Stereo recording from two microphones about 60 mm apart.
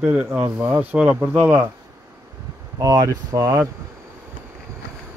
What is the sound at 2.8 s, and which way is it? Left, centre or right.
Speech, right.